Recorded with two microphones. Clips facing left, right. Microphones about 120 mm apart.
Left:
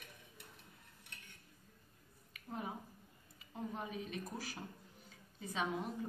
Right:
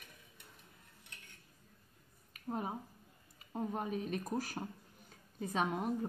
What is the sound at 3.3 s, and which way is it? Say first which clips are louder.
A woman's voice: right 5 dB; 45° right (ahead or behind).